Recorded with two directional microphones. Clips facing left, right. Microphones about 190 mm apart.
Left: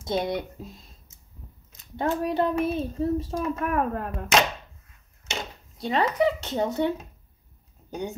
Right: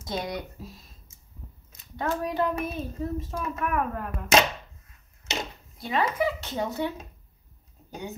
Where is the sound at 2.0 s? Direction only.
30° left (ahead or behind).